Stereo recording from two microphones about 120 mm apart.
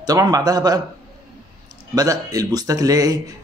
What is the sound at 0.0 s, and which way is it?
Speech, 30° right (ahead or behind).